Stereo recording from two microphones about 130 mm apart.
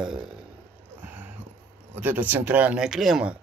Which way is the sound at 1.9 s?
15° right (ahead or behind).